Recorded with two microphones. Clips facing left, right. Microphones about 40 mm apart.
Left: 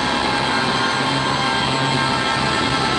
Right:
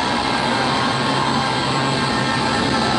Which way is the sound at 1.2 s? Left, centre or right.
Left.